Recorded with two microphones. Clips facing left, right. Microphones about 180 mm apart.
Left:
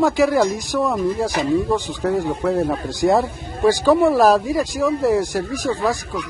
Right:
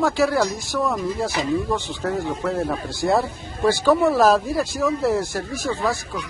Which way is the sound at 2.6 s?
15° left (ahead or behind).